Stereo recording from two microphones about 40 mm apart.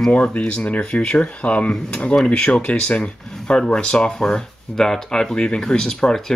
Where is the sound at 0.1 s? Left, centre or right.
Left; by 5.3 s centre.